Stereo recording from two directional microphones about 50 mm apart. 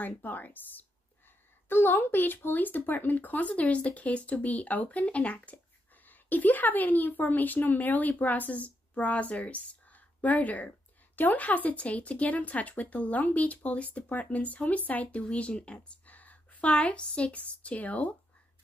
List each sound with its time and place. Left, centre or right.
0.0 s speech: left
1.7 s a woman's voice: left
16.1 s a sound: left
16.7 s speech: left